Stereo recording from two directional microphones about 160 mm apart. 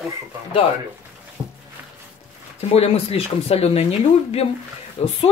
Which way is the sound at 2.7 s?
40° left (ahead or behind).